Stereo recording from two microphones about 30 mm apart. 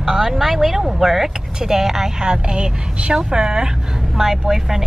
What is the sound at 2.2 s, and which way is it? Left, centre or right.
Speech, right.